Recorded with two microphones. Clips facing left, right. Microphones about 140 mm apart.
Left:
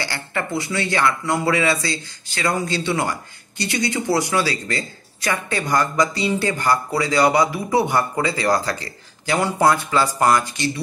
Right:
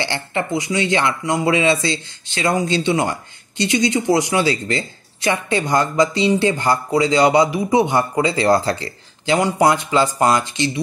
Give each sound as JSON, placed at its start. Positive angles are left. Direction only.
{"t": 0.0, "sound": "speech", "side_deg": -20}